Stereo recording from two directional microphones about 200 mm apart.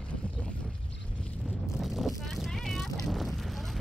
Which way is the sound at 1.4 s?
Centre (ahead or behind).